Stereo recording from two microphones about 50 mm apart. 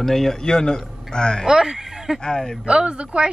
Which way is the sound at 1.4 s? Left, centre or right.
Centre.